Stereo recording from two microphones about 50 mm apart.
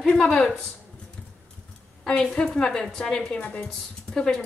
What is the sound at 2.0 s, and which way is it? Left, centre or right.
A woman's voice, left.